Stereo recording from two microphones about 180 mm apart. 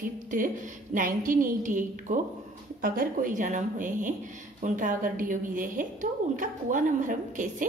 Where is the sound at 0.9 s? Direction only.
50° right (ahead or behind).